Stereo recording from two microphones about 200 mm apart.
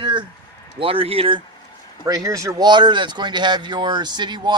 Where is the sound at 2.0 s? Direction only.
15° right (ahead or behind).